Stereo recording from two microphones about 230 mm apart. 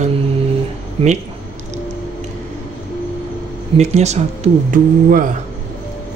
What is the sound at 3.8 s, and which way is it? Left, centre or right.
Speech, right.